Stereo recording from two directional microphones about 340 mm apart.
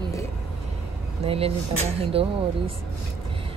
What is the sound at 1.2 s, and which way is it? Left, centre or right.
Speech, centre.